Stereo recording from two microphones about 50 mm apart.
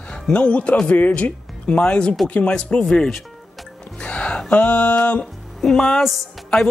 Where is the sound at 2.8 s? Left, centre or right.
Centre.